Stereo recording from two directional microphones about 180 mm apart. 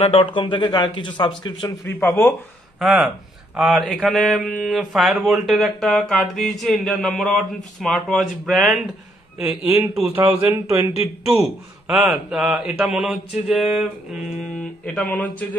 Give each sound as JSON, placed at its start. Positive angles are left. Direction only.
{"t": 0.0, "sound": "speech", "side_deg": 30}
{"t": 1.9, "sound": "speech", "side_deg": 10}
{"t": 2.8, "sound": "speech", "side_deg": 0}
{"t": 9.4, "sound": "speech", "side_deg": -15}
{"t": 9.9, "sound": "speech", "side_deg": -5}
{"t": 11.9, "sound": "speech", "side_deg": -5}